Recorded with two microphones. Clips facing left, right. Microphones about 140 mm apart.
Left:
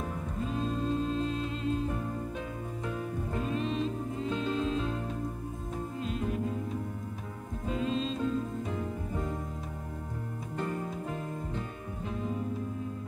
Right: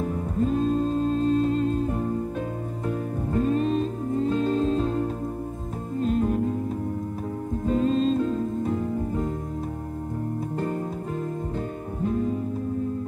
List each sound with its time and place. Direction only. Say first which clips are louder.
0.4 s music: right 10 dB; 45° right (ahead or behind)
3.3 s music: right 10 dB; 45° right (ahead or behind)
7.6 s music: right 9 dB; 45° right (ahead or behind)